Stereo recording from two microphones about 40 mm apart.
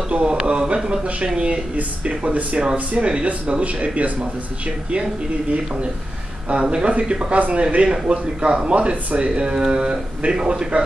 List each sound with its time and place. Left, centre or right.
0.1 s speech: right
7.3 s speech: right